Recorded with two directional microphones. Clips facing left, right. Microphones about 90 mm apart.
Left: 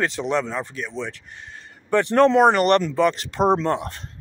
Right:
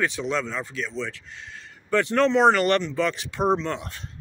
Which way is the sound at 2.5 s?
25° left (ahead or behind).